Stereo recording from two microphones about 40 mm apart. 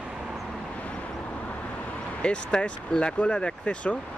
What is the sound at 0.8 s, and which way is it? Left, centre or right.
Vehicle, left.